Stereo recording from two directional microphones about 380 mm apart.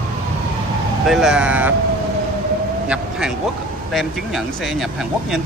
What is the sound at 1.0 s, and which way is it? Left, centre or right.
Speech, centre.